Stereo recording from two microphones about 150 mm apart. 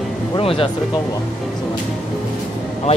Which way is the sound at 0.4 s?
40° left (ahead or behind).